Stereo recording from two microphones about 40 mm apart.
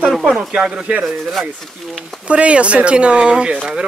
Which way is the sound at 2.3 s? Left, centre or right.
Right.